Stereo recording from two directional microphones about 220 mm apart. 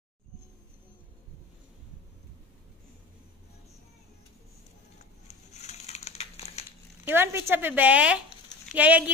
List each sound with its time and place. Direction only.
5.3 s crushing: 30° left (ahead or behind)
7.1 s speech: 10° right (ahead or behind)